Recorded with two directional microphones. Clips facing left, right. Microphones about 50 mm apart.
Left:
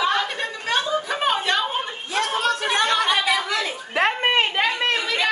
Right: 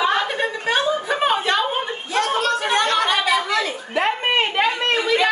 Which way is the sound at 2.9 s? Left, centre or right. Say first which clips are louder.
Right 2 dB; centre.